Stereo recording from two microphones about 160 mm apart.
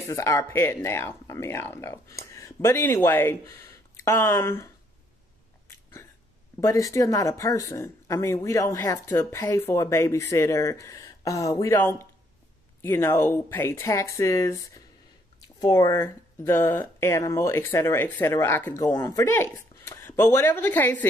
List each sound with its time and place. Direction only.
0.1 s speech: 20° left (ahead or behind)
6.6 s speech: 20° left (ahead or behind)